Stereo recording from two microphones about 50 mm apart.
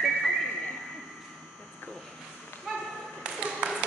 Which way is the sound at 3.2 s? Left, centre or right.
Right.